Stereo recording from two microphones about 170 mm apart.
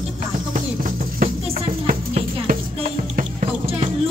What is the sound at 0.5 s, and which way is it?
Music, 50° right (ahead or behind).